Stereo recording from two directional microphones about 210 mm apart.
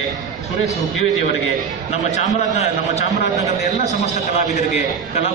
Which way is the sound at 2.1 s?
35° left (ahead or behind).